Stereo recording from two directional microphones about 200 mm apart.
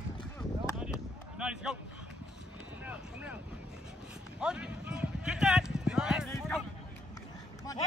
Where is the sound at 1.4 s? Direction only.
5° right (ahead or behind).